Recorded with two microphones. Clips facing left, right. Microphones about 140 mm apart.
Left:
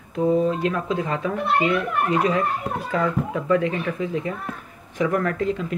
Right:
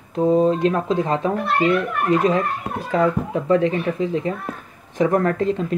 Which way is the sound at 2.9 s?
30° right (ahead or behind).